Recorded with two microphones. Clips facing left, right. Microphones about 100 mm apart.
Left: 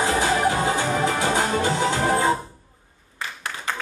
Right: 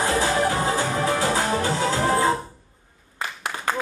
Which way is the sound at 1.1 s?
20° left (ahead or behind).